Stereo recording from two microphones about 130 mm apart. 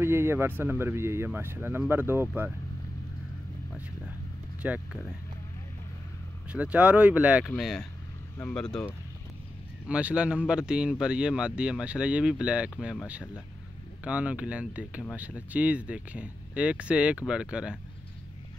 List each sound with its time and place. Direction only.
0.0 s a man's voice: 20° right (ahead or behind)
4.6 s speech: 10° right (ahead or behind)
6.5 s a man's voice: 10° right (ahead or behind)
7.4 s speech: 5° left (ahead or behind)
9.8 s a man's voice: 10° right (ahead or behind)